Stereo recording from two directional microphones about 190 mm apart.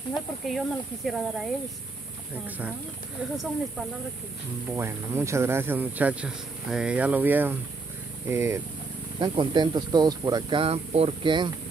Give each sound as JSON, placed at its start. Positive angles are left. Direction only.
{"t": 0.5, "sound": "speech", "side_deg": 0}
{"t": 4.7, "sound": "speech", "side_deg": -15}
{"t": 9.2, "sound": "speech", "side_deg": -25}